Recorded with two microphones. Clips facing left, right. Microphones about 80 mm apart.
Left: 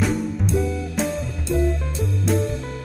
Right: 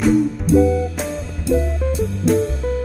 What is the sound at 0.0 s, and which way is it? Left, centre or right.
Music, centre.